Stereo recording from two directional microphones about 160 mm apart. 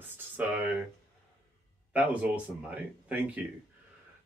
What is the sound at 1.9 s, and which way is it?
Speech, 10° right (ahead or behind).